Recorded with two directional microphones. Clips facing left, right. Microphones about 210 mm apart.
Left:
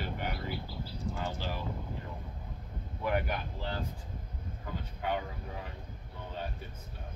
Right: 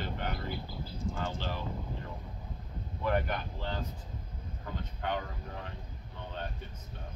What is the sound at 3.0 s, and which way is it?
Speech, 10° left (ahead or behind).